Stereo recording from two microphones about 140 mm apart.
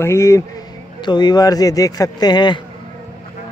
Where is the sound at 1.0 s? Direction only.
30° left (ahead or behind).